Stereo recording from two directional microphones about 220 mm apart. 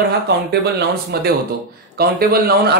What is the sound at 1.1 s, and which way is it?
Speech, 45° right (ahead or behind).